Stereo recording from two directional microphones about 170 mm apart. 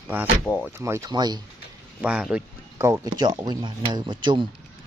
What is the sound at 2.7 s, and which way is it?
Speech, 15° right (ahead or behind).